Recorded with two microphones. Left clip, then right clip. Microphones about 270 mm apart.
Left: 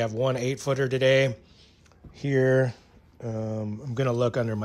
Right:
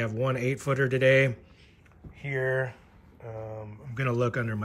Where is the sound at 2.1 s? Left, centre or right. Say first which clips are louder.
Left 6 dB; left.